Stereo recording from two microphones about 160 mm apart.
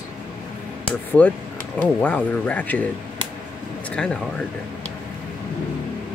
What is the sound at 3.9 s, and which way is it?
Speech, 5° left (ahead or behind).